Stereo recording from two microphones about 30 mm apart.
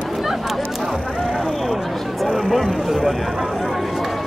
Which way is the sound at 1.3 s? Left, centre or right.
Centre.